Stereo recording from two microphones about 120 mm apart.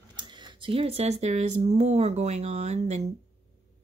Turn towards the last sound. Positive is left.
turn(degrees=-65)  # may be behind; listen again after turning